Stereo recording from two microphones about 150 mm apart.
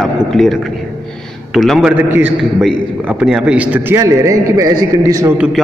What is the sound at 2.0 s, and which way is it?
A man's voice, 15° right (ahead or behind).